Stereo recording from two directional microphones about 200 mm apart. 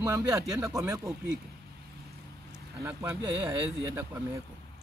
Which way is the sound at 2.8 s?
10° right (ahead or behind).